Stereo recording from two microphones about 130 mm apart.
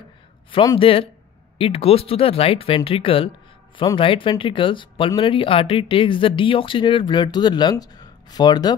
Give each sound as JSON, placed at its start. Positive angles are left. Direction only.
{"t": 0.7, "sound": "speech", "side_deg": 45}